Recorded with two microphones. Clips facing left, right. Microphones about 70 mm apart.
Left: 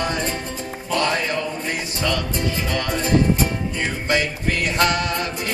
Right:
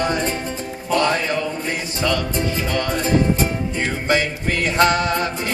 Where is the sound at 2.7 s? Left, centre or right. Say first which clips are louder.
Even; right.